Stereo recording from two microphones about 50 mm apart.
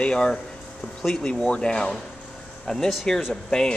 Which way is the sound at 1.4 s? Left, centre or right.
Centre.